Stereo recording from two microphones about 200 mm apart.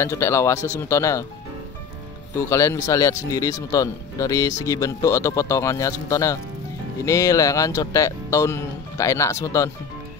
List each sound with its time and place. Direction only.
0.0 s speech: 15° left (ahead or behind)
2.5 s speech: 15° left (ahead or behind)